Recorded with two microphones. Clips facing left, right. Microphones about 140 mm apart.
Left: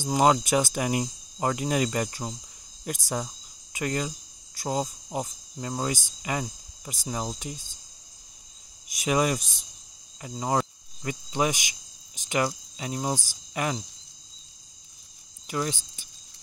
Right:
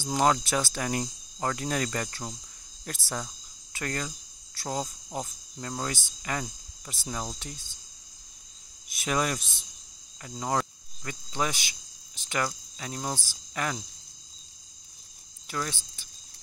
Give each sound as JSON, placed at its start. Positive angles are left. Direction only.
{"t": 0.0, "sound": "cricket", "side_deg": 15}
{"t": 2.8, "sound": "speech", "side_deg": 15}
{"t": 7.2, "sound": "cricket", "side_deg": 10}
{"t": 9.0, "sound": "cricket", "side_deg": 10}
{"t": 9.4, "sound": "cricket", "side_deg": 45}
{"t": 10.2, "sound": "cricket", "side_deg": 10}
{"t": 15.4, "sound": "speech", "side_deg": 15}